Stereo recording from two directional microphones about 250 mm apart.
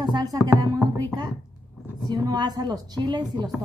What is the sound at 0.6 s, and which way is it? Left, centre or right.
Speech, centre.